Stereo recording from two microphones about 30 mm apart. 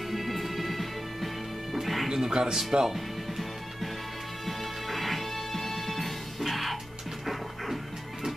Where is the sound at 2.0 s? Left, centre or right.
Centre.